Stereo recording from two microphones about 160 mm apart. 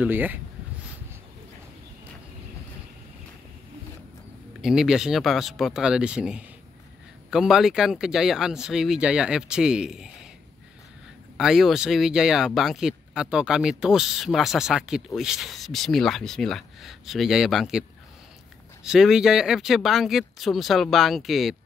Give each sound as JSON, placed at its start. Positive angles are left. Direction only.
{"t": 0.0, "sound": "speech", "side_deg": -10}
{"t": 4.6, "sound": "speech", "side_deg": -5}
{"t": 11.3, "sound": "speech", "side_deg": 0}
{"t": 18.9, "sound": "speech", "side_deg": -5}